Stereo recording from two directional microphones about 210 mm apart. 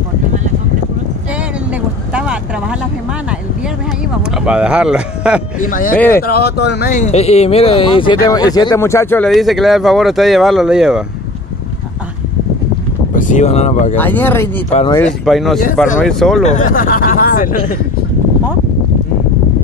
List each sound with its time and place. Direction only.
4.5 s speech: 5° right (ahead or behind)
5.6 s speech: 40° left (ahead or behind)
5.9 s speech: 10° left (ahead or behind)
6.2 s speech: 50° left (ahead or behind)
6.9 s speech: 35° left (ahead or behind); by 9.3 s 10° left (ahead or behind)
9.3 s speech: centre (ahead or behind)
13.1 s speech: 35° left (ahead or behind)
13.9 s speech: 10° left (ahead or behind)
14.7 s speech: 30° left (ahead or behind)
15.2 s speech: centre (ahead or behind)
16.4 s speech: 35° left (ahead or behind)